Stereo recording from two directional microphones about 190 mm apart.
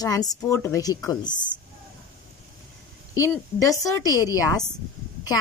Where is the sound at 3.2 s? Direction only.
20° left (ahead or behind).